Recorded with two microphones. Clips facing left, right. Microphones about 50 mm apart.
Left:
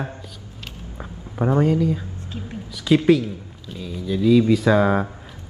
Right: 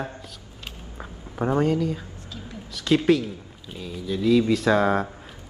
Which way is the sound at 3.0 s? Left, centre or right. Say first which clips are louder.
Left 3 dB; centre.